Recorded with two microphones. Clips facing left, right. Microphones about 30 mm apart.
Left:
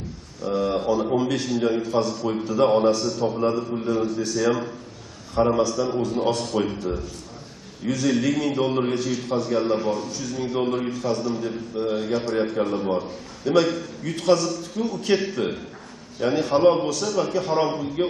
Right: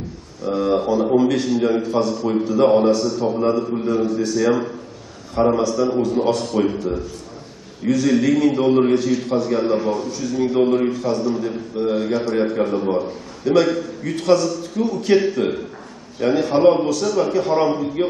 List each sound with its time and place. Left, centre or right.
0.5 s a man's voice: centre
5.6 s a man's voice: centre